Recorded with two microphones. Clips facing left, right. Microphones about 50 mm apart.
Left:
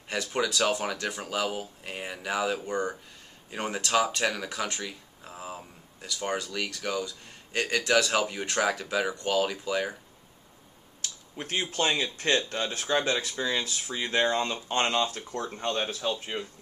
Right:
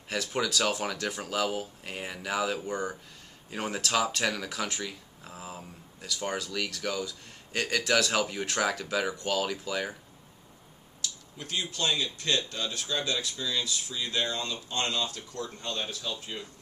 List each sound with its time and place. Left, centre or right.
0.1 s speech: centre
11.0 s speech: left